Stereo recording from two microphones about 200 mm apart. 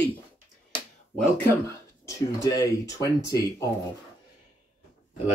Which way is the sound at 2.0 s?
15° left (ahead or behind).